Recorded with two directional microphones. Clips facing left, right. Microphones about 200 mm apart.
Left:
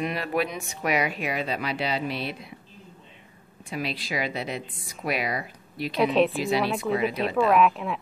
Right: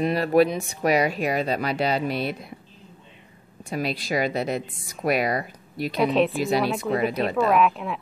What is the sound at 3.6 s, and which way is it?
A woman's voice, 45° right (ahead or behind).